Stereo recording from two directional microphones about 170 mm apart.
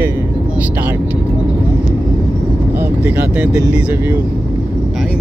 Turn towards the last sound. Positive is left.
turn(degrees=-10)  # may be behind; listen again after turning